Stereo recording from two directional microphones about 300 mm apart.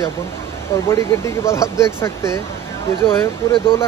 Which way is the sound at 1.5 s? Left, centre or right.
Centre.